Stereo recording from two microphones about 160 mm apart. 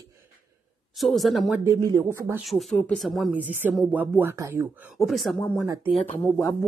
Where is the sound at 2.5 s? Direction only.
Centre (ahead or behind).